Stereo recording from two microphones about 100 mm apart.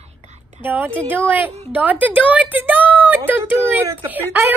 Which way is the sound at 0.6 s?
20° right (ahead or behind).